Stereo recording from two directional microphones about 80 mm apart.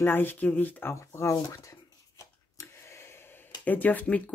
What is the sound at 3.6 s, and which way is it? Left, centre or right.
Speech, left.